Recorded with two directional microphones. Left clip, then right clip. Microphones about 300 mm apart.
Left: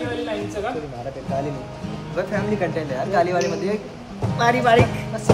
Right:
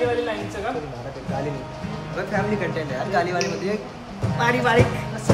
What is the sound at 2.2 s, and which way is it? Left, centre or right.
Speech, centre.